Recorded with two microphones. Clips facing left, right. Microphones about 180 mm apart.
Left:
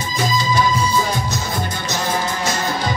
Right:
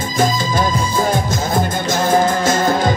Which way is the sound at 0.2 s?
50° right (ahead or behind).